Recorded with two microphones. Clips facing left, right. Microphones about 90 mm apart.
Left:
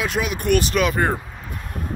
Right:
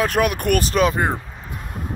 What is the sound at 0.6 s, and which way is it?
Speech, 35° right (ahead or behind).